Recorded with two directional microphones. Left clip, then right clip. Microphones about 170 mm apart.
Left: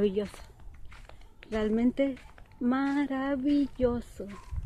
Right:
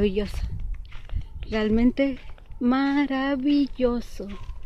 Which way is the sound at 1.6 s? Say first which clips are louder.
Right 5 dB; 25° right (ahead or behind).